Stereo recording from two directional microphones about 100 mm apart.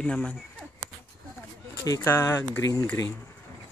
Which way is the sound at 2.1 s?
25° left (ahead or behind).